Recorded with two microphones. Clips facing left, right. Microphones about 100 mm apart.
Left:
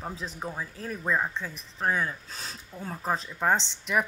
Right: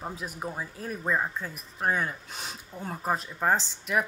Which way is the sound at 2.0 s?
15° right (ahead or behind).